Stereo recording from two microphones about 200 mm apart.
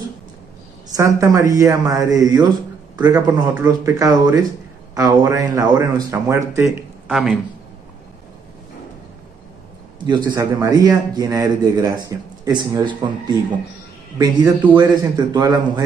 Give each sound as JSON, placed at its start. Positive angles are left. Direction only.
{"t": 0.9, "sound": "speech", "side_deg": -15}
{"t": 7.1, "sound": "speech", "side_deg": 0}
{"t": 10.0, "sound": "a man's voice", "side_deg": -20}